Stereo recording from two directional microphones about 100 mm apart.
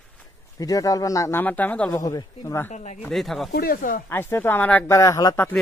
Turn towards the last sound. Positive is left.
turn(degrees=35)  # may be behind; listen again after turning